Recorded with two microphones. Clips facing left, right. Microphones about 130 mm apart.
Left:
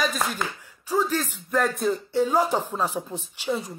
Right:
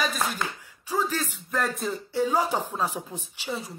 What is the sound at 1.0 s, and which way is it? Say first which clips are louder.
Speech: left 3 dB; 40° left (ahead or behind).